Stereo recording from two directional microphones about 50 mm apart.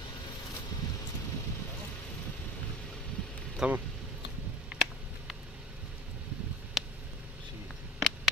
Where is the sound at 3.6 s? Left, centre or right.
Right.